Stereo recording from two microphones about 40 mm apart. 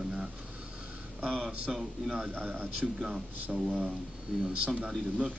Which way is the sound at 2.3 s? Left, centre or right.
Right.